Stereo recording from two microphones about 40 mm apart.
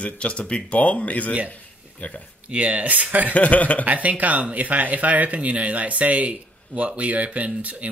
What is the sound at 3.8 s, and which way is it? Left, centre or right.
Speech, right.